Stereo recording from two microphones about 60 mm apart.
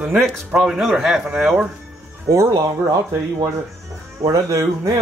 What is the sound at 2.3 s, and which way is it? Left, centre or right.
Speech, right.